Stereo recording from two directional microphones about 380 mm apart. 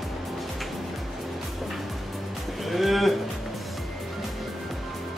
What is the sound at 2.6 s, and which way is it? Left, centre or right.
Music, centre.